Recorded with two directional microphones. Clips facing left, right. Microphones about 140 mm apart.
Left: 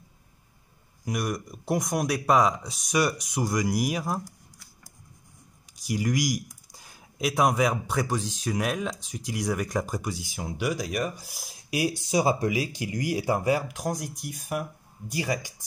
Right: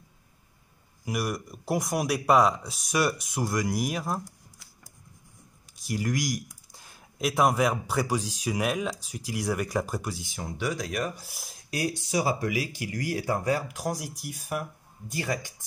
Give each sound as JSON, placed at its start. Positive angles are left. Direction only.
{"t": 1.0, "sound": "speech", "side_deg": -5}
{"t": 5.8, "sound": "speech", "side_deg": 0}